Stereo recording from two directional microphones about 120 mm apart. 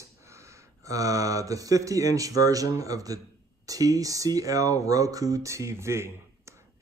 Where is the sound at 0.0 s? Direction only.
25° right (ahead or behind).